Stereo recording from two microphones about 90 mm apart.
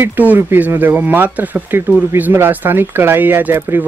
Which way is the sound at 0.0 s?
20° right (ahead or behind).